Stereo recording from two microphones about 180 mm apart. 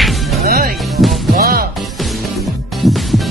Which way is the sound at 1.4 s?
55° right (ahead or behind).